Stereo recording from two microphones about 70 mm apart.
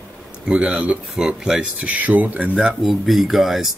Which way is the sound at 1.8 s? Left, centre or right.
Right.